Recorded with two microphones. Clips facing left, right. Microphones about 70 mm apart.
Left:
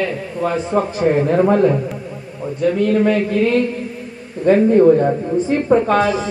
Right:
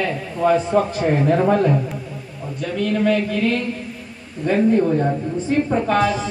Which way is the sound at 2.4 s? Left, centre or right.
Centre.